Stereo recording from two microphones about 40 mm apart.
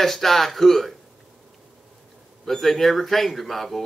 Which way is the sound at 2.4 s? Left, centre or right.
Centre.